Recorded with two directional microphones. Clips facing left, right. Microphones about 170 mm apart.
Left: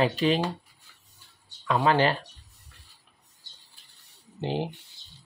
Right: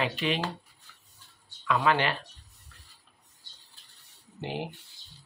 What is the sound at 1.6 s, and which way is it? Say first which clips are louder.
Speech: left 3 dB; 35° left (ahead or behind).